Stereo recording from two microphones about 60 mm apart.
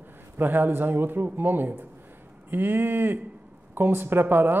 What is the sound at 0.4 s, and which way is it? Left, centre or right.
Speech, right.